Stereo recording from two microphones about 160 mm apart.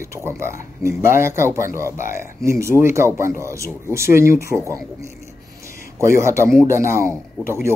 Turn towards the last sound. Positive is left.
turn(degrees=15)  # may be behind; listen again after turning